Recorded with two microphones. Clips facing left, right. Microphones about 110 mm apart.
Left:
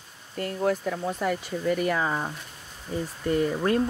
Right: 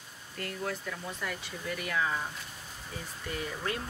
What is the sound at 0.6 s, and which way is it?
Speech, 45° left (ahead or behind).